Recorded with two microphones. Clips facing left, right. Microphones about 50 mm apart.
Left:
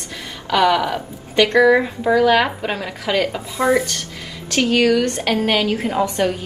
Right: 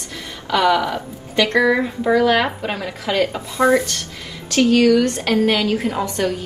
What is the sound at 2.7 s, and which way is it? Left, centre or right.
Speech, left.